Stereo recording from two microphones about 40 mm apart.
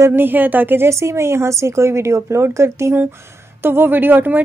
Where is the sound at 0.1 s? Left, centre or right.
Right.